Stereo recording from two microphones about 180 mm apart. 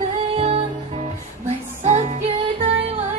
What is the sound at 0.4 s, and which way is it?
Music, 35° right (ahead or behind).